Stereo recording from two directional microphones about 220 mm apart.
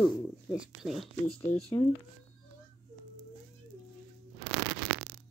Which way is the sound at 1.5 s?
35° left (ahead or behind).